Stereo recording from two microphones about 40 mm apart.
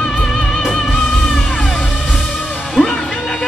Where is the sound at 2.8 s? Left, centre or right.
Centre.